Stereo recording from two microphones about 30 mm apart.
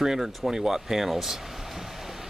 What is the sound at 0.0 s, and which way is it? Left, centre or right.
Speech, centre.